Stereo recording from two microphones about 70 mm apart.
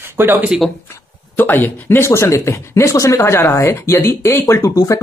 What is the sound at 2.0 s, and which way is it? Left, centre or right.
Speech, left.